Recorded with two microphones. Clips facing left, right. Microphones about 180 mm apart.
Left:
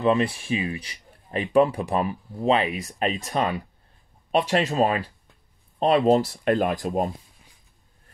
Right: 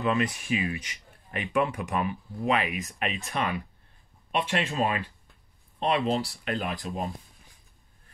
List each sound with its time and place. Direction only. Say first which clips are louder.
0.0 s speech: left 5 dB; 30° left (ahead or behind); by 7.1 s 45° left (ahead or behind)